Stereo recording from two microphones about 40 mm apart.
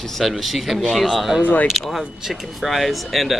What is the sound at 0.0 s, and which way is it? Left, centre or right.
Speech, centre.